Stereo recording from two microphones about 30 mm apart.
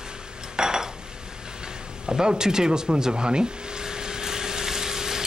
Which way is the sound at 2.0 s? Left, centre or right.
Right.